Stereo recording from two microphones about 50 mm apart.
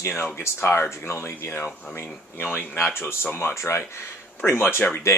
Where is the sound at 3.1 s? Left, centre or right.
Left.